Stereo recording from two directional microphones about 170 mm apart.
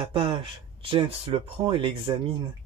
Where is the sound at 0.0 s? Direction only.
30° right (ahead or behind).